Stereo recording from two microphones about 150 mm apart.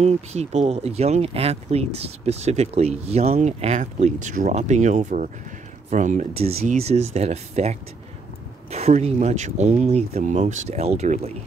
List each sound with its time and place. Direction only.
0.0 s speech: 45° right (ahead or behind)